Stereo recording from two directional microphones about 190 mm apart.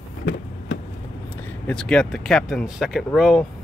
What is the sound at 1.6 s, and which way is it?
Speech, 5° left (ahead or behind).